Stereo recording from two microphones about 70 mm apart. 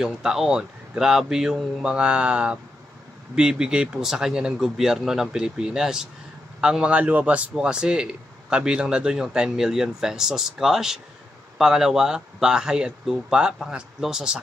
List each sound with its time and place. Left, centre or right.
0.0 s a man's voice: centre